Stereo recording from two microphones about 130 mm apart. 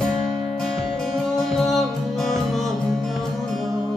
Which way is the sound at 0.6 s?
5° left (ahead or behind).